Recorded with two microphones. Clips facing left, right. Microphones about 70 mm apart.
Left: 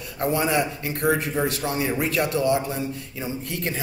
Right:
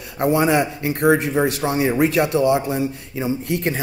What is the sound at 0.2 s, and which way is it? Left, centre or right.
Speech, right.